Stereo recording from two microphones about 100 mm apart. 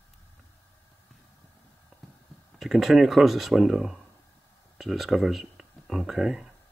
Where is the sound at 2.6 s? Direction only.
Centre (ahead or behind).